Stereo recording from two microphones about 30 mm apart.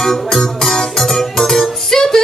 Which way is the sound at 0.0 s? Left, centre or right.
Centre.